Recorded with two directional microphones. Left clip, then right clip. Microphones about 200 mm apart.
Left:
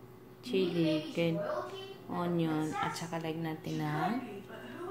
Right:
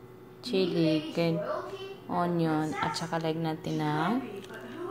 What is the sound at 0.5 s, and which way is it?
A woman's voice, 15° right (ahead or behind).